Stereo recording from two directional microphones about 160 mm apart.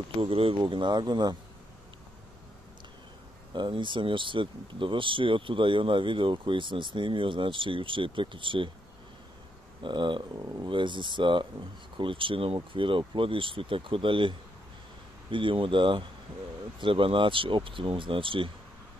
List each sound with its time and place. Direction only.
0.2 s speech: 35° right (ahead or behind)
3.5 s speech: 30° right (ahead or behind)
9.8 s speech: 30° right (ahead or behind)
15.3 s speech: 30° right (ahead or behind)